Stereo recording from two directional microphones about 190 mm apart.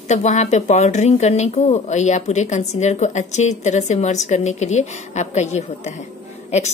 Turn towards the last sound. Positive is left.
turn(degrees=35)  # may be behind; listen again after turning